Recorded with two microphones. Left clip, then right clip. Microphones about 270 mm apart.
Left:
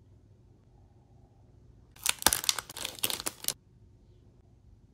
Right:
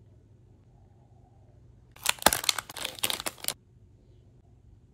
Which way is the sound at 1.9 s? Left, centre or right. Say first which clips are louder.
Right 4 dB; centre.